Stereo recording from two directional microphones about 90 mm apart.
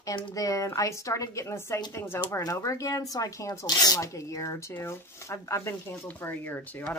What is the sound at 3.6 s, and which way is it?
Speech, 50° left (ahead or behind).